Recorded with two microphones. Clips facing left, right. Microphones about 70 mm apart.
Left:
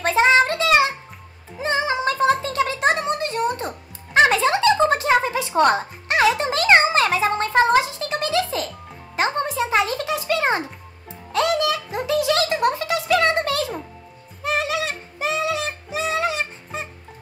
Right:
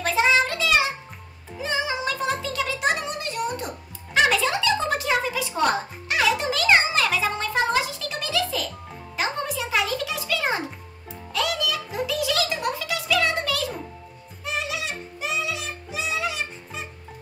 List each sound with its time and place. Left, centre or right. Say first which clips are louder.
0.0 s child singing: left 4 dB; left
1.6 s music: left 5 dB; left
14.4 s music: left 6 dB; left